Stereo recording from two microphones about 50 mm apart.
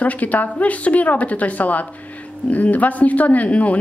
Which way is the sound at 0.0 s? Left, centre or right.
Left.